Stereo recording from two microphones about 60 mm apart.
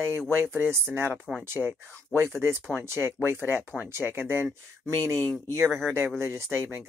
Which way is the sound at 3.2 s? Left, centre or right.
Right.